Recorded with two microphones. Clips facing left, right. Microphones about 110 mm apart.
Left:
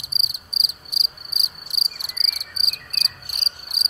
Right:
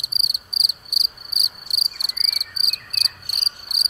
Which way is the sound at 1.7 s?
20° right (ahead or behind).